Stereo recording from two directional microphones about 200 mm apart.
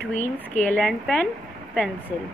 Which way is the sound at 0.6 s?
5° left (ahead or behind).